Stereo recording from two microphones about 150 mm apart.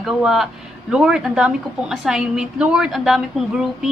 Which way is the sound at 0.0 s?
5° right (ahead or behind).